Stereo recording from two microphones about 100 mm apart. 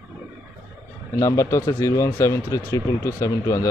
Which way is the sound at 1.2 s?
30° left (ahead or behind).